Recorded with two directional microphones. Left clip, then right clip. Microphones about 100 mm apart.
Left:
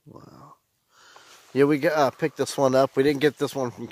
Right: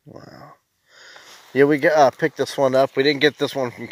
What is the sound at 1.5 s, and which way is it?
Speech, 15° left (ahead or behind).